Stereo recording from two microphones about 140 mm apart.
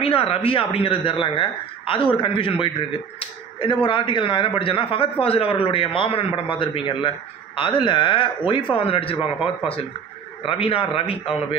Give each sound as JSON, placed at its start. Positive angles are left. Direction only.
{"t": 0.0, "sound": "a man's voice", "side_deg": 45}
{"t": 10.4, "sound": "a man's voice", "side_deg": 40}